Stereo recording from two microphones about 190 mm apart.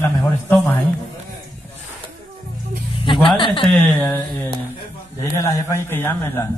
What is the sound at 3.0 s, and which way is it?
Speech, 25° left (ahead or behind).